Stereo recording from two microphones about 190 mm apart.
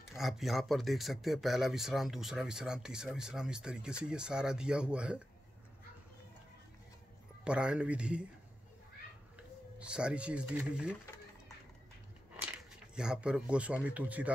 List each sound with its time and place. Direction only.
0.1 s speech: centre (ahead or behind)
7.4 s speech: 5° right (ahead or behind)
9.8 s speech: 5° right (ahead or behind)
12.9 s speech: 5° right (ahead or behind)